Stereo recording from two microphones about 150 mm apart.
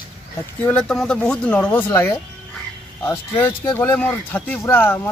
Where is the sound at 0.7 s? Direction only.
5° left (ahead or behind).